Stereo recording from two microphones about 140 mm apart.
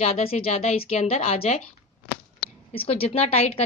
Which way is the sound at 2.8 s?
45° left (ahead or behind).